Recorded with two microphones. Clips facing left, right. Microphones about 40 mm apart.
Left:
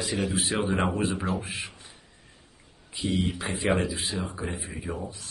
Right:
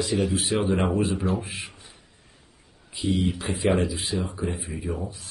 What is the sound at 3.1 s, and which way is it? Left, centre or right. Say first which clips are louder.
Speech: right 2 dB; centre.